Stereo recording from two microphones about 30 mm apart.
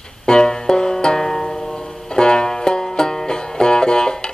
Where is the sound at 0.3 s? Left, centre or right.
Left.